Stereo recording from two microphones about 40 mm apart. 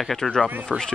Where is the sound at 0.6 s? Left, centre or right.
Centre.